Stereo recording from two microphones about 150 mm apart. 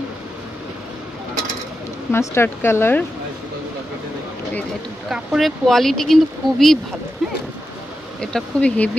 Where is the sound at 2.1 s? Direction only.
15° left (ahead or behind).